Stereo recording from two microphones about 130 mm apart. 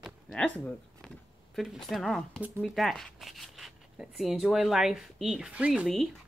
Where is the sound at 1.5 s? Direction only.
5° right (ahead or behind).